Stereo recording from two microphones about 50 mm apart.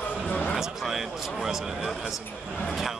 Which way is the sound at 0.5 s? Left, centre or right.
Centre.